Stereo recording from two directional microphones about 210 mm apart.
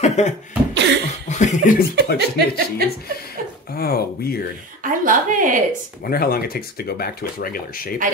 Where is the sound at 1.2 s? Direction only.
35° left (ahead or behind).